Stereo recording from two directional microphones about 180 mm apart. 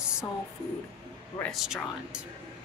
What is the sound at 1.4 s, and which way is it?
Speech, centre (ahead or behind).